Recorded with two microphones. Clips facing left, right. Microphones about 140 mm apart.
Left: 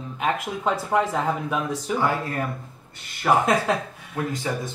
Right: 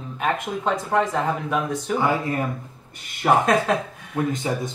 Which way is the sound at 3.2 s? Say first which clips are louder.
Right 2 dB; 20° right (ahead or behind).